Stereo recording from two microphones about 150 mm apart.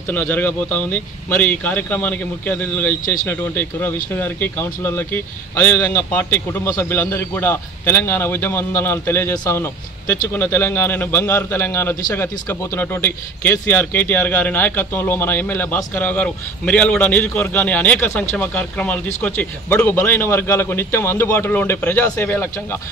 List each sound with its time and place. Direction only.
0.1 s speech: 10° left (ahead or behind)